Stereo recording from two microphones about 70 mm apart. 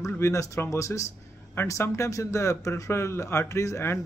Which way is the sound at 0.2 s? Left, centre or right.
Left.